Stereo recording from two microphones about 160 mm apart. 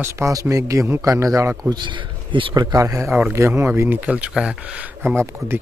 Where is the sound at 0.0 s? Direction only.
20° right (ahead or behind).